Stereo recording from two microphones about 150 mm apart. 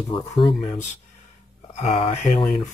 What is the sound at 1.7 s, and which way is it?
Speech, 40° left (ahead or behind).